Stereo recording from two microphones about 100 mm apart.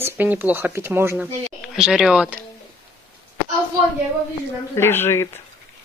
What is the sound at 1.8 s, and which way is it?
Speech, 5° right (ahead or behind).